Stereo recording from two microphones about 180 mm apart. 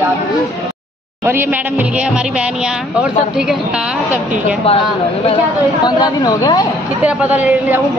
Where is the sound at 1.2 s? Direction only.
10° right (ahead or behind).